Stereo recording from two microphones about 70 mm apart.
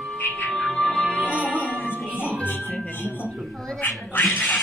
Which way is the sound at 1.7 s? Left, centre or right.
Left.